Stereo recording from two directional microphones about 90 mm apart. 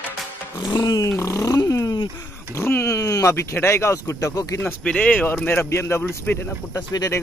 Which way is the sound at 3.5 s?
30° left (ahead or behind).